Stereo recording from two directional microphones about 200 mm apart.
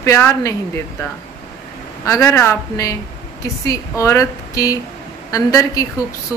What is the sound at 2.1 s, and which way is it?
Speech, 15° left (ahead or behind).